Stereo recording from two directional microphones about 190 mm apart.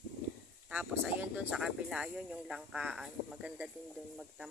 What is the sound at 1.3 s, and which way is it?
Speech, 5° right (ahead or behind).